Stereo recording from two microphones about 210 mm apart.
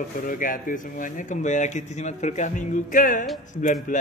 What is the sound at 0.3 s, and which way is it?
A man's voice, 40° left (ahead or behind).